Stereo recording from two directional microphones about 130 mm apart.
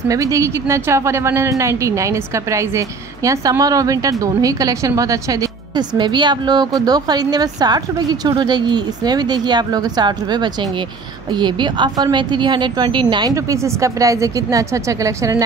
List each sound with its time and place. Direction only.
0.1 s a woman's voice: 25° right (ahead or behind)